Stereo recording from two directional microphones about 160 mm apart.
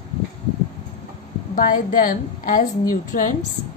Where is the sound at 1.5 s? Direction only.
60° left (ahead or behind).